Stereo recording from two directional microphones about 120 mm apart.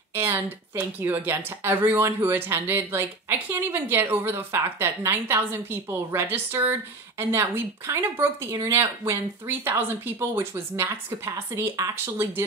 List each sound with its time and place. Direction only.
0.1 s speech: 20° right (ahead or behind)